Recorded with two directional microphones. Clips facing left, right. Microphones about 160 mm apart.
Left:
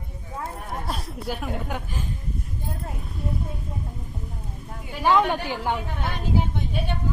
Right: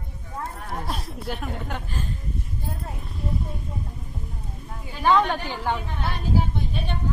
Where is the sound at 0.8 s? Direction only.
Centre (ahead or behind).